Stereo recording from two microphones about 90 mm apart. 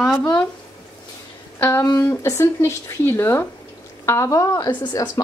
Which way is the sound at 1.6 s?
30° left (ahead or behind).